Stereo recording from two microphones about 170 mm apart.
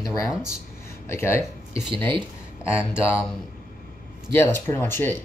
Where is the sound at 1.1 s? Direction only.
15° left (ahead or behind).